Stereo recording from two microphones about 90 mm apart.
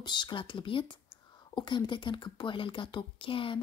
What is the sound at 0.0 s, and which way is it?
Speech, 60° left (ahead or behind).